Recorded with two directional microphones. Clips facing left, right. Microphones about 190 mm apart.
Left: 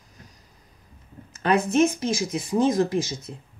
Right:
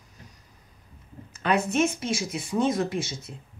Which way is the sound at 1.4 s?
35° left (ahead or behind).